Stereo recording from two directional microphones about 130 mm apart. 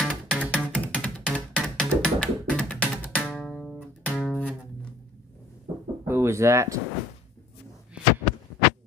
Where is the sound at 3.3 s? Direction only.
Centre (ahead or behind).